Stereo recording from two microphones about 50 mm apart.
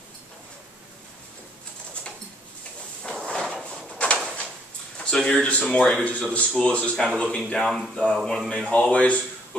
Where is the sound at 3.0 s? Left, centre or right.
Centre.